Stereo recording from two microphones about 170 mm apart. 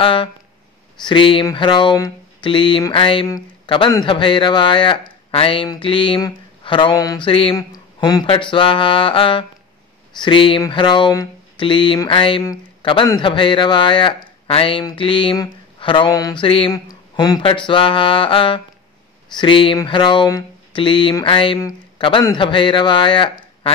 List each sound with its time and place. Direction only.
0.0 s speech: 30° left (ahead or behind)
21.5 s a man's voice: 20° left (ahead or behind)